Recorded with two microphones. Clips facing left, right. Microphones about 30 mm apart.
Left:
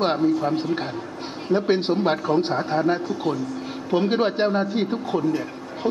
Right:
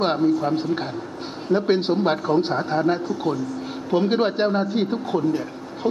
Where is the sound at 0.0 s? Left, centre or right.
Centre.